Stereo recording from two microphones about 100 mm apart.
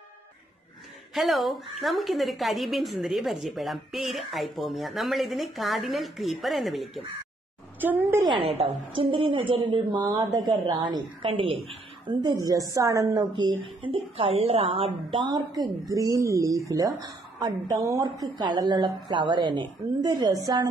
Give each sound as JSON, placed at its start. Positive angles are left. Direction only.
{"t": 1.1, "sound": "a woman's voice", "side_deg": 0}
{"t": 7.8, "sound": "a woman's voice", "side_deg": -20}
{"t": 8.2, "sound": "a woman's voice", "side_deg": -60}
{"t": 9.9, "sound": "a woman's voice", "side_deg": -35}
{"t": 11.2, "sound": "a woman's voice", "side_deg": -60}
{"t": 12.4, "sound": "a woman's voice", "side_deg": -35}
{"t": 13.9, "sound": "a woman's voice", "side_deg": -70}